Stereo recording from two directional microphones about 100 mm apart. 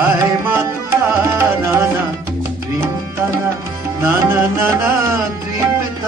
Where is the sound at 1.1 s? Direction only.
25° right (ahead or behind).